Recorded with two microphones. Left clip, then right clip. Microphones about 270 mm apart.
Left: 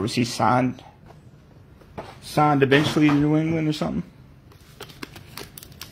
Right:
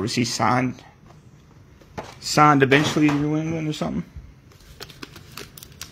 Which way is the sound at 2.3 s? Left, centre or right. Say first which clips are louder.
Right 3 dB; right.